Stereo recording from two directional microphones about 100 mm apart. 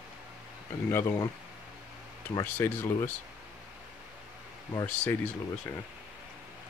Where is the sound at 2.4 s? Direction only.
20° left (ahead or behind).